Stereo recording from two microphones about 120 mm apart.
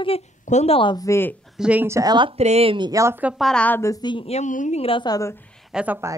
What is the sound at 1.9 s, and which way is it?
Speech, 25° right (ahead or behind).